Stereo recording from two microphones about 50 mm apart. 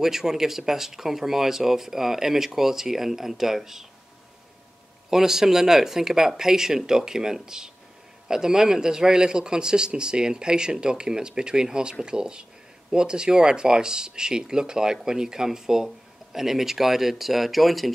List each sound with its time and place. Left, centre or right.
0.0 s a man's voice: centre
5.1 s a man's voice: centre